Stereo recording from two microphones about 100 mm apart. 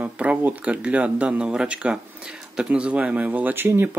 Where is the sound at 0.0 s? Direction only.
15° right (ahead or behind).